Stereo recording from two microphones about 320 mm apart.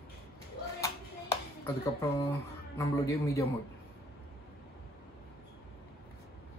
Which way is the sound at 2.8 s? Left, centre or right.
Centre.